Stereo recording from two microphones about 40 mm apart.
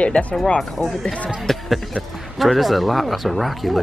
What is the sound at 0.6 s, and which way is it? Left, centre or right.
Speech, centre.